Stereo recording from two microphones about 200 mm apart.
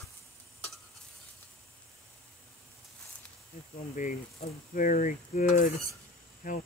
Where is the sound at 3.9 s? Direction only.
40° left (ahead or behind).